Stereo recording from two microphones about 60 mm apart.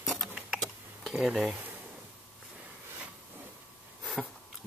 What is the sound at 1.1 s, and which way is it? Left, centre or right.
Speech, centre.